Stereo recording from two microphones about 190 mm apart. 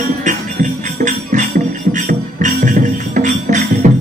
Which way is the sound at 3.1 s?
40° right (ahead or behind).